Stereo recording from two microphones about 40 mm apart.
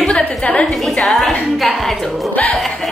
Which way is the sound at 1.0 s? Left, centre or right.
Centre.